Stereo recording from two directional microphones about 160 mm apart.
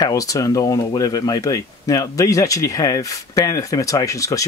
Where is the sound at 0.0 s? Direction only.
20° left (ahead or behind).